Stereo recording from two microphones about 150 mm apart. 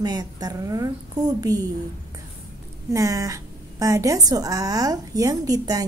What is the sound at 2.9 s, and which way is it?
A woman's voice, 20° right (ahead or behind).